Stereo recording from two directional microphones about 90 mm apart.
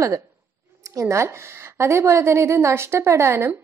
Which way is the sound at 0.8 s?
35° right (ahead or behind).